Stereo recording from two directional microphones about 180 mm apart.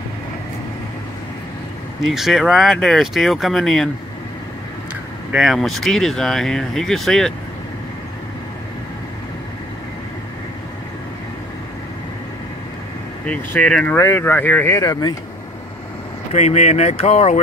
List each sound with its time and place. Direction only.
2.0 s speech: centre (ahead or behind)
5.3 s speech: centre (ahead or behind)
13.3 s speech: 5° left (ahead or behind)
16.3 s speech: 40° left (ahead or behind)